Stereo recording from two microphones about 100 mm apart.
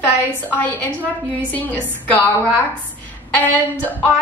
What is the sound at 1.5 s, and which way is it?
A woman's voice, 15° left (ahead or behind).